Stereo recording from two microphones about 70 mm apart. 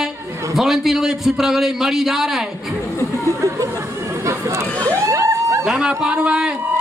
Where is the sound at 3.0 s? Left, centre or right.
Left.